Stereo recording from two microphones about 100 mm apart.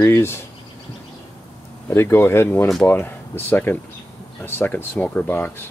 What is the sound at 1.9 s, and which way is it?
Speech, 25° left (ahead or behind).